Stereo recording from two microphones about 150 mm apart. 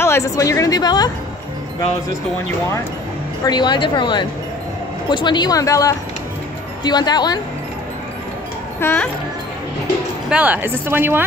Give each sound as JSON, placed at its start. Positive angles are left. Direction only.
{"t": 0.0, "sound": "a woman's voice", "side_deg": 20}
{"t": 3.4, "sound": "a woman's voice", "side_deg": 30}
{"t": 8.7, "sound": "a child's voice", "side_deg": 15}
{"t": 10.3, "sound": "a woman's voice", "side_deg": -10}